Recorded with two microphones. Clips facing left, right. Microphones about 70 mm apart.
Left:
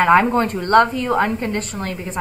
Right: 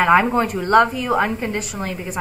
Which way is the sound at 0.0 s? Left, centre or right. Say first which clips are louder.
Left 1 dB; centre.